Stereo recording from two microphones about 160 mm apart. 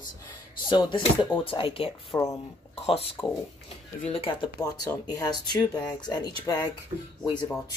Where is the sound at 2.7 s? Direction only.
40° left (ahead or behind).